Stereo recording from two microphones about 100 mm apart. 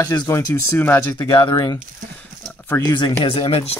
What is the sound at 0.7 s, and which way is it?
Speech, 20° left (ahead or behind).